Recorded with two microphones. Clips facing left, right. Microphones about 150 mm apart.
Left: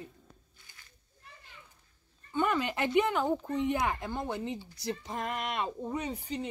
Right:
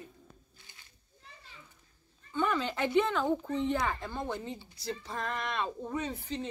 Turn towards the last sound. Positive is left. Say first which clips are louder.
# even
turn(degrees=15)  # may be behind; listen again after turning